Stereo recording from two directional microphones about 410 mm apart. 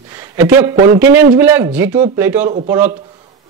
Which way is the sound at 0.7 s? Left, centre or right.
Right.